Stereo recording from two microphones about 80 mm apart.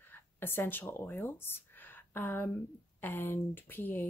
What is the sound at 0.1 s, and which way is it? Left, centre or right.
Speech, left.